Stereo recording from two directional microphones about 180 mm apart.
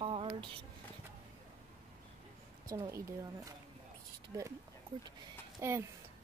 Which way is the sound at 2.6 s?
15° right (ahead or behind).